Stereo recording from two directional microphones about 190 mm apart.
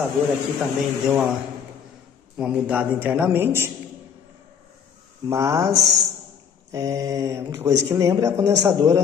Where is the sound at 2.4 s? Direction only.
5° right (ahead or behind).